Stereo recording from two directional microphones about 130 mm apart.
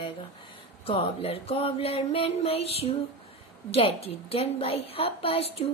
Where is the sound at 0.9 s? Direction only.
50° left (ahead or behind).